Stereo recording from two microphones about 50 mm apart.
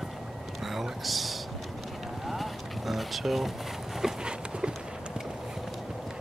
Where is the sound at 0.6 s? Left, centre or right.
Centre.